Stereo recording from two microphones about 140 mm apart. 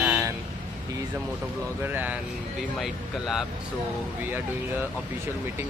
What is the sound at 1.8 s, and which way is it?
Speech, 15° right (ahead or behind).